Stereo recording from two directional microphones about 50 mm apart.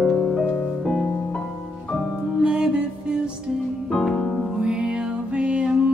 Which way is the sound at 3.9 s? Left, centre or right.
Centre.